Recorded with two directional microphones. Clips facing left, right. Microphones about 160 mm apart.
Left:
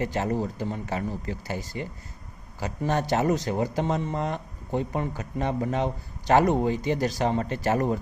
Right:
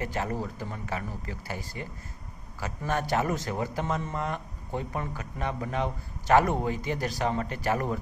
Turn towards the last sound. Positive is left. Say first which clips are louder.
# left 4 dB
turn(degrees=30)  # may be behind; listen again after turning